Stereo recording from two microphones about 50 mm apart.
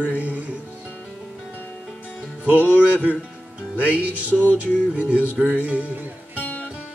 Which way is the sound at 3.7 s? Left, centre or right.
Right.